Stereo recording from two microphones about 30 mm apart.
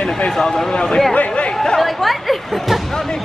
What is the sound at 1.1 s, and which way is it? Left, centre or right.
Speech, left.